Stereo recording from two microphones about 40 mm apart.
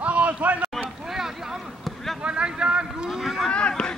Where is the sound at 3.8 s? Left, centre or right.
Left.